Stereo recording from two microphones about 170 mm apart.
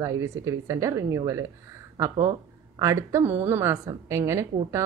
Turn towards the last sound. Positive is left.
turn(degrees=-15)  # may be behind; listen again after turning